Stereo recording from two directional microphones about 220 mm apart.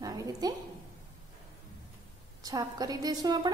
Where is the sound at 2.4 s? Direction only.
15° right (ahead or behind).